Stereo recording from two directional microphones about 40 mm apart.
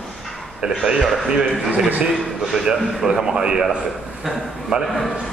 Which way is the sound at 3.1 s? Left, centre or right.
Right.